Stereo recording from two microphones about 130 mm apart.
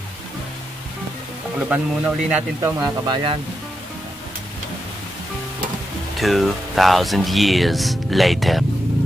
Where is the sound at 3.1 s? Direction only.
40° right (ahead or behind).